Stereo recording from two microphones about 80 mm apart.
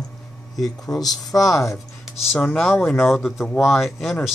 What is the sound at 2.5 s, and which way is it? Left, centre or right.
Speech, centre.